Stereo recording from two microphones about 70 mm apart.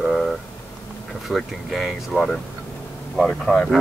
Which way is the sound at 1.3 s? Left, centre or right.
Centre.